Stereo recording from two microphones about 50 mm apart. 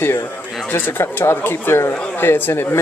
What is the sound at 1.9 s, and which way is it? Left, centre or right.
Speech, left.